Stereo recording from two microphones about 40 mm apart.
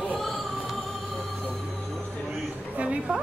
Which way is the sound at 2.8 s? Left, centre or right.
Right.